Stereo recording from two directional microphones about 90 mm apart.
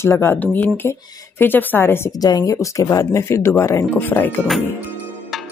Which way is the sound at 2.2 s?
40° left (ahead or behind).